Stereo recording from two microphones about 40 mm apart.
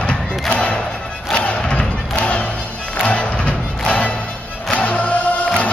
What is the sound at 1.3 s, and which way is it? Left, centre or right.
Music, left.